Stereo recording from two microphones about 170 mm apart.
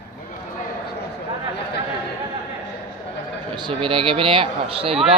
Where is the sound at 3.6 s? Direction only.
30° right (ahead or behind).